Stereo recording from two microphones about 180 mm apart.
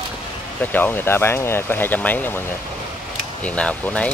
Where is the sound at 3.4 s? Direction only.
5° left (ahead or behind).